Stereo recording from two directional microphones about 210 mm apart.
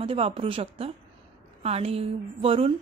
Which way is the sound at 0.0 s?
25° right (ahead or behind).